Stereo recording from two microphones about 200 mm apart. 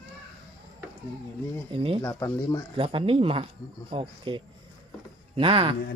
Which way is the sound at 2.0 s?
15° left (ahead or behind).